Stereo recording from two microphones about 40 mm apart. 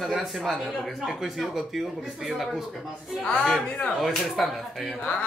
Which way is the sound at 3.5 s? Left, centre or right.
Left.